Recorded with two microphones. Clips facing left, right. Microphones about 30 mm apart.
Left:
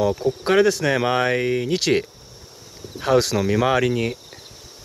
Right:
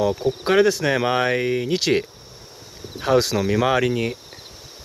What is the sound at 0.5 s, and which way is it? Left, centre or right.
Speech, centre.